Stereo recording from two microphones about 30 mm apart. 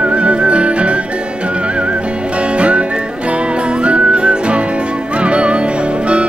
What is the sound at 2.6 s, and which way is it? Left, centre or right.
Music, right.